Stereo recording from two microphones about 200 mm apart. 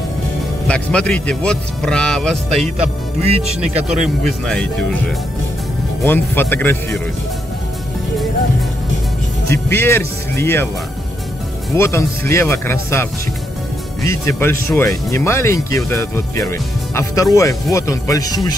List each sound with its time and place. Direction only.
0.7 s speech: 5° left (ahead or behind)
3.7 s speech: 35° right (ahead or behind)
4.2 s speech: centre (ahead or behind)
9.5 s speech: 15° left (ahead or behind)
11.7 s speech: 15° left (ahead or behind)